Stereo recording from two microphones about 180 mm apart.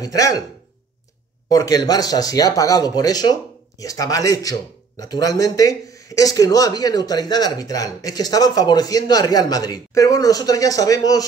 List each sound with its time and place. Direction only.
0.0 s speech: 20° left (ahead or behind)
1.5 s speech: 20° left (ahead or behind)